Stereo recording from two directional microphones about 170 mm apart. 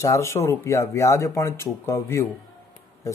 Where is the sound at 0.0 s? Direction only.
15° left (ahead or behind).